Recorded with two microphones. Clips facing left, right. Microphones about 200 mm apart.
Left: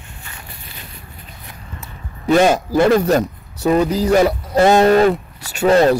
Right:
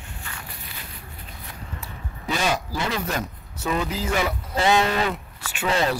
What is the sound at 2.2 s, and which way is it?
A man's voice, 45° left (ahead or behind).